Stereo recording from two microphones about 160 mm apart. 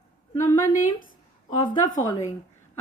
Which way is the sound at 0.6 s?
55° left (ahead or behind).